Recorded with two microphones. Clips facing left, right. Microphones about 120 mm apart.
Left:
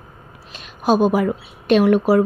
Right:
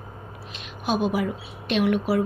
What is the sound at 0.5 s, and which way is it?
A woman's voice, 40° left (ahead or behind).